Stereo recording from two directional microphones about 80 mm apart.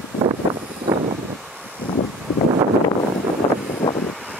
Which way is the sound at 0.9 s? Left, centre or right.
Right.